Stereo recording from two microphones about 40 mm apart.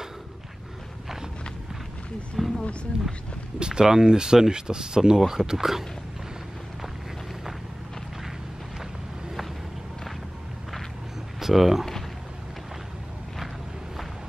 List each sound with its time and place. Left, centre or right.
2.3 s a sound: centre
2.6 s speech: left
3.5 s speech: right
11.3 s speech: centre